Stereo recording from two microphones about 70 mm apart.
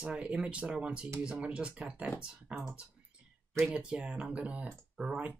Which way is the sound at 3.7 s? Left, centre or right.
Centre.